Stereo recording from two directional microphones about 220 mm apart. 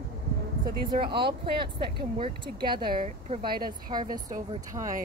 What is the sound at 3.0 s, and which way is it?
Speech, 35° right (ahead or behind).